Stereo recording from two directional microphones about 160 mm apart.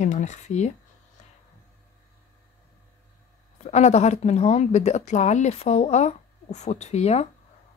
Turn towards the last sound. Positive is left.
turn(degrees=45)  # may be behind; listen again after turning